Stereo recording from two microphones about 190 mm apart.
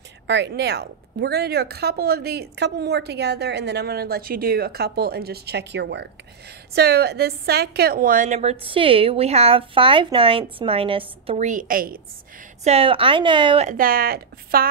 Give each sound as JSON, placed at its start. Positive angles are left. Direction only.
{"t": 0.3, "sound": "a woman's voice", "side_deg": -60}
{"t": 12.6, "sound": "a woman's voice", "side_deg": -30}
{"t": 13.7, "sound": "speech", "side_deg": -50}